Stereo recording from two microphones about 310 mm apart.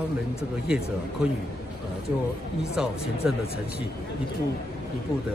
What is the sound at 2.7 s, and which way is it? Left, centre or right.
Speech, centre.